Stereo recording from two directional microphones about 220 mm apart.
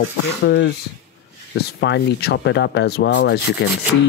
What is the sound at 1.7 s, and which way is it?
Sanding, 50° left (ahead or behind).